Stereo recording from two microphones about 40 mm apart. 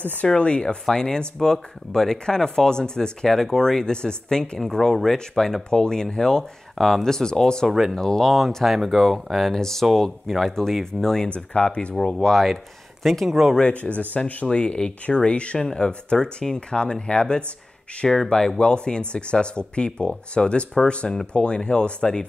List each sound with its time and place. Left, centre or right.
0.4 s speech: left
11.3 s speech: left
12.1 s speech: centre
13.6 s speech: left
18.0 s speech: centre
18.6 s speech: left